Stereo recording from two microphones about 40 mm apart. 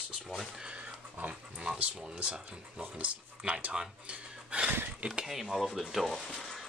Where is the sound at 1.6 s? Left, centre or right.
Centre.